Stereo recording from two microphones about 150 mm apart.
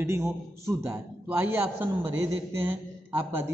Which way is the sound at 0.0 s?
20° right (ahead or behind).